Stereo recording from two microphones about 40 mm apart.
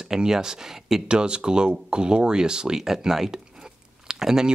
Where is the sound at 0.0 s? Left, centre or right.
Centre.